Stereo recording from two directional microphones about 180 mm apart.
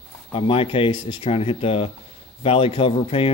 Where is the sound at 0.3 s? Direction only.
30° left (ahead or behind).